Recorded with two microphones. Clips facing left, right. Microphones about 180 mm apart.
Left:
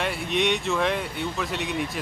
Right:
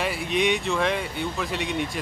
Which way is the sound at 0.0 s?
Centre (ahead or behind).